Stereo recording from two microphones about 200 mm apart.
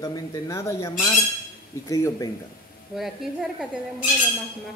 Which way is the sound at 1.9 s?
15° left (ahead or behind).